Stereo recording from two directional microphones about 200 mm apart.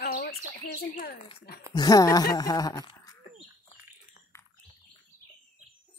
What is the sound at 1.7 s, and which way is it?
Speech, 20° left (ahead or behind).